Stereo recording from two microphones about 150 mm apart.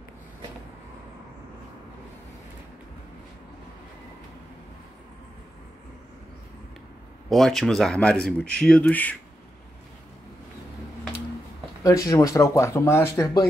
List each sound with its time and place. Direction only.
7.2 s speech: centre (ahead or behind)
11.8 s speech: 20° left (ahead or behind)